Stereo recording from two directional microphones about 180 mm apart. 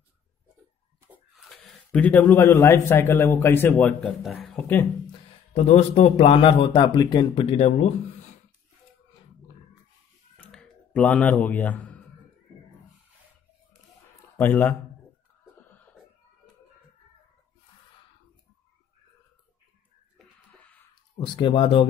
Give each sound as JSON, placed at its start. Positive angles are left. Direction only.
{"t": 1.1, "sound": "speech", "side_deg": 0}
{"t": 5.5, "sound": "a man's voice", "side_deg": 35}
{"t": 10.3, "sound": "a sound", "side_deg": 5}
{"t": 14.3, "sound": "speech", "side_deg": 10}
{"t": 20.5, "sound": "a sound", "side_deg": 10}
{"t": 21.2, "sound": "speech", "side_deg": 25}